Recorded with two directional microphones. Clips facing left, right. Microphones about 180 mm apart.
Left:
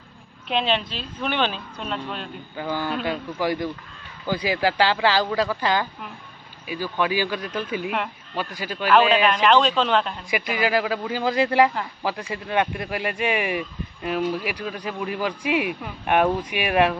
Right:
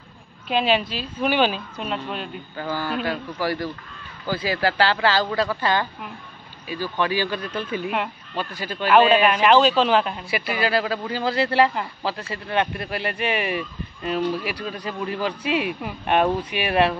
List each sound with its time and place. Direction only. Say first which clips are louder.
0.5 s a woman's voice: right 3 dB; 5° right (ahead or behind)
2.5 s a man's voice: even; 15° left (ahead or behind)
9.1 s a woman's voice: right 2 dB; 10° right (ahead or behind)
10.3 s speech: left 1 dB; 15° left (ahead or behind)